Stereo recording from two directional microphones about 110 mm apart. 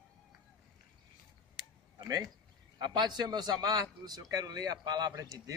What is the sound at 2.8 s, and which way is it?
A man's voice, 40° right (ahead or behind).